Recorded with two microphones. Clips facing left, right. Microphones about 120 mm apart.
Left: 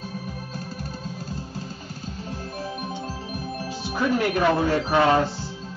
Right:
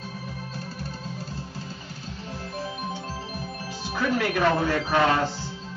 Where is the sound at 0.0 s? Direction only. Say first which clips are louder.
Left 2 dB; 40° left (ahead or behind).